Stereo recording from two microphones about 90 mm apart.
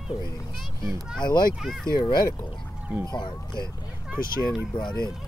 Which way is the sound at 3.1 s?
55° left (ahead or behind).